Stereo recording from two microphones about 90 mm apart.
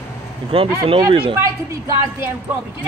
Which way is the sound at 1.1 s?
75° right (ahead or behind).